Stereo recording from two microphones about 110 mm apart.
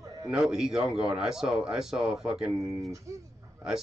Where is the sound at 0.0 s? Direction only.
30° right (ahead or behind).